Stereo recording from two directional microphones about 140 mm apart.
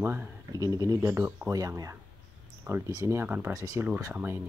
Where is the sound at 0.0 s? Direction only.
15° right (ahead or behind).